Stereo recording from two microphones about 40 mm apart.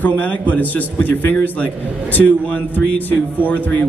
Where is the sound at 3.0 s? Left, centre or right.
Left.